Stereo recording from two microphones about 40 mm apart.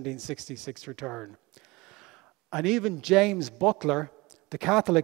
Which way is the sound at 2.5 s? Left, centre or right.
Centre.